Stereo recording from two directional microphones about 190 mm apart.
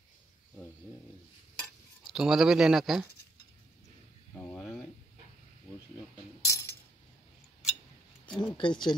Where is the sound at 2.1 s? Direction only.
Centre (ahead or behind).